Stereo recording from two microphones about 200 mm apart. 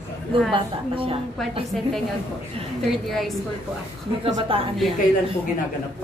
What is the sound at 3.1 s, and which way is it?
Speech, centre (ahead or behind).